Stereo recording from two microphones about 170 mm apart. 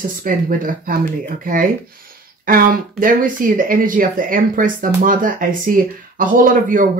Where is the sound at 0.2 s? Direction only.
55° right (ahead or behind).